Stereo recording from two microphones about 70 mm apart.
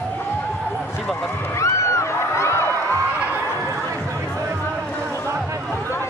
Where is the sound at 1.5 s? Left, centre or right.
Left.